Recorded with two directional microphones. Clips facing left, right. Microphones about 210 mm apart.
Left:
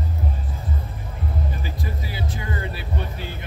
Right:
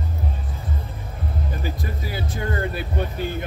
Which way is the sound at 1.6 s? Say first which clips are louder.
Right 2 dB; 50° right (ahead or behind).